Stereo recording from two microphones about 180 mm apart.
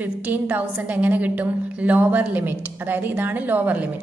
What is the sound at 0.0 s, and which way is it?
A woman's voice, 10° right (ahead or behind).